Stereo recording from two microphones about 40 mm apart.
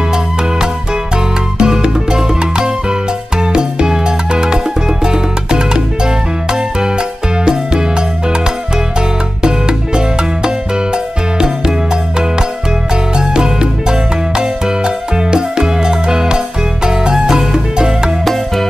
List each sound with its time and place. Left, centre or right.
1.6 s music: right
9.4 s music: centre
13.3 s music: centre